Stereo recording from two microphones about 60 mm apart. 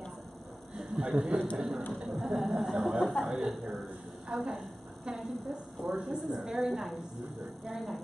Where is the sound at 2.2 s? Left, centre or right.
Centre.